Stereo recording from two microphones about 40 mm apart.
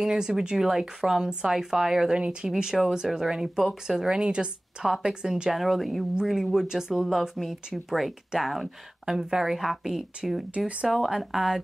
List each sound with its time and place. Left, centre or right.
0.0 s speech: centre
2.1 s speech: right
2.7 s speech: centre
4.2 s speech: right
5.5 s speech: centre